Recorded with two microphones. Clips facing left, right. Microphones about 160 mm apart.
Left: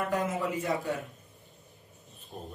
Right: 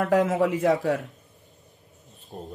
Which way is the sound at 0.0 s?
90° right.